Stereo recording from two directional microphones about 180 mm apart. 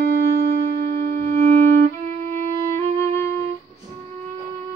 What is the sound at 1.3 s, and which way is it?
Music, 15° left (ahead or behind).